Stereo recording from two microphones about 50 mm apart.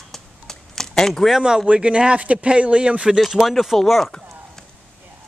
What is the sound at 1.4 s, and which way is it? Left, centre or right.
Speech, centre.